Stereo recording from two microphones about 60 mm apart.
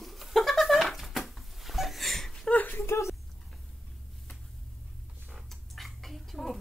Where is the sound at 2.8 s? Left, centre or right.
Left.